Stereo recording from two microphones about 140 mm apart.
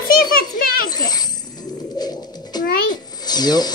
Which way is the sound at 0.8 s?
30° left (ahead or behind).